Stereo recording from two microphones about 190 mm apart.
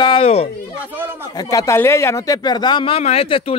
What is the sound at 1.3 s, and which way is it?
Speech, 15° left (ahead or behind).